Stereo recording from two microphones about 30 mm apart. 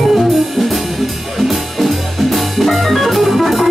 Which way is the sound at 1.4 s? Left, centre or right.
Centre.